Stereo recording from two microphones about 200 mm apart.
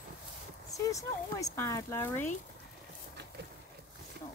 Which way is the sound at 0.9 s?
15° left (ahead or behind).